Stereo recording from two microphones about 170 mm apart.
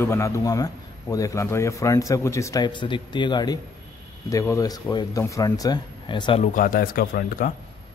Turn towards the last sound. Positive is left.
turn(degrees=55)  # may be behind; listen again after turning